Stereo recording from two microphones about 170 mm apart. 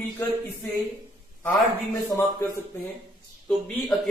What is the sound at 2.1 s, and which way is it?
Speech, 20° left (ahead or behind).